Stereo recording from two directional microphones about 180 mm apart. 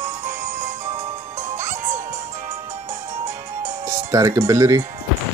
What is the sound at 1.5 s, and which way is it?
Music, 15° right (ahead or behind).